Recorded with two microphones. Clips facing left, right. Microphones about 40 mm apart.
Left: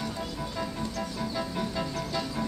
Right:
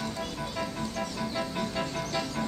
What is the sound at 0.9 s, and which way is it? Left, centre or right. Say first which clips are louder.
Music: right 1 dB; right.